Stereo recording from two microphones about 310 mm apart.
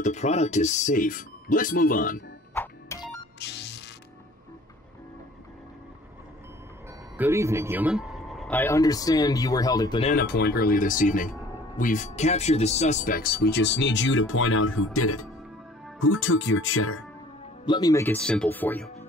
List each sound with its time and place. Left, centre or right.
0.0 s speech: left
2.5 s music: centre
3.3 s music: left
7.2 s speech: centre
10.1 s speech: left
17.6 s speech: centre